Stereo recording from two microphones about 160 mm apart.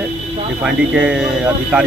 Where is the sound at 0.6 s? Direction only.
5° right (ahead or behind).